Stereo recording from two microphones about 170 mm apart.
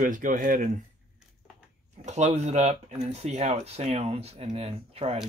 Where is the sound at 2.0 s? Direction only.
45° right (ahead or behind).